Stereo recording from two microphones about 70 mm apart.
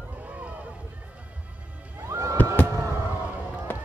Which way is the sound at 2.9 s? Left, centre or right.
Right.